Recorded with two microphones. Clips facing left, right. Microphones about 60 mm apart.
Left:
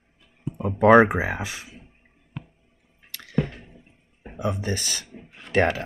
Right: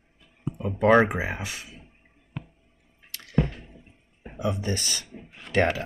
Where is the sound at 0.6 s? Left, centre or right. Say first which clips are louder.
Left 4 dB; left.